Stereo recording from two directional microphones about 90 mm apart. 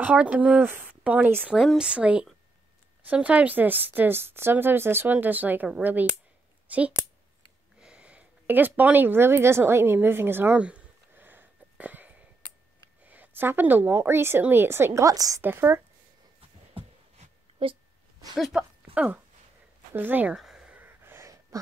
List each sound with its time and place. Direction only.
0.0 s a woman's voice: 15° right (ahead or behind)
10.6 s a sound: 15° right (ahead or behind)
13.0 s a woman's voice: 20° right (ahead or behind); by 15.4 s 40° right (ahead or behind)
15.4 s a woman's voice: 25° right (ahead or behind)
17.6 s speech: 90° right
18.5 s speech: 5° right (ahead or behind)
18.9 s a woman's voice: 20° right (ahead or behind)
20.3 s a sound: 5° right (ahead or behind)
20.8 s a sound: 25° right (ahead or behind)